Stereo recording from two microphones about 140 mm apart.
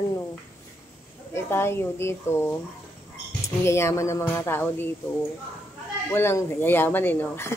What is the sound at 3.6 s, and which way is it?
Speech, 20° left (ahead or behind).